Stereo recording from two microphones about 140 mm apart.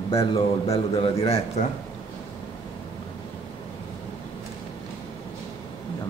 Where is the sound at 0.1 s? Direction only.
40° left (ahead or behind).